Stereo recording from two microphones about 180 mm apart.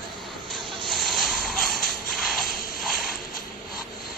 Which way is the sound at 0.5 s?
Centre (ahead or behind).